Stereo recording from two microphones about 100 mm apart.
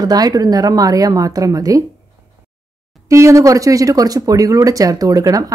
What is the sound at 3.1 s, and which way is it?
Speech, 30° right (ahead or behind).